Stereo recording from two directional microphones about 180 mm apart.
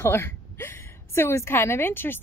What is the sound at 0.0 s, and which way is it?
A woman's voice, 15° left (ahead or behind).